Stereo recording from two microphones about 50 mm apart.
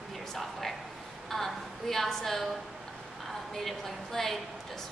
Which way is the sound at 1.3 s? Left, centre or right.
Centre.